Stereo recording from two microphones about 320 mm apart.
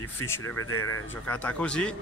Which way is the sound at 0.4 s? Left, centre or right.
Left.